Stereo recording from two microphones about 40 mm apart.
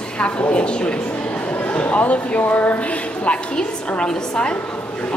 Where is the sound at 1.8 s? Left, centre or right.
Left.